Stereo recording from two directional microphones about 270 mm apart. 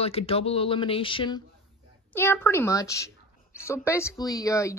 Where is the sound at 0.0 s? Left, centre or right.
Left.